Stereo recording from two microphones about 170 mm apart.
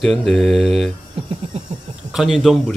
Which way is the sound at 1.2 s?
35° right (ahead or behind).